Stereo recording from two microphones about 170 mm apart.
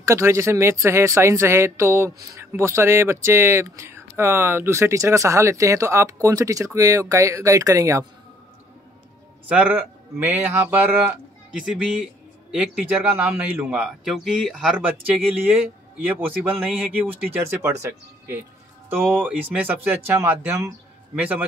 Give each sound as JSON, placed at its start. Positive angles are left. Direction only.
{"t": 0.0, "sound": "speech", "side_deg": -15}
{"t": 9.5, "sound": "speech", "side_deg": -10}